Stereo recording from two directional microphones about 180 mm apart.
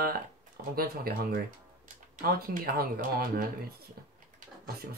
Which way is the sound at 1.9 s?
45° right (ahead or behind).